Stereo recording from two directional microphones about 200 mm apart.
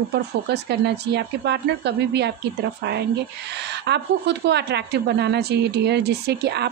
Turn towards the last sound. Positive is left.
turn(degrees=-55)  # may be behind; listen again after turning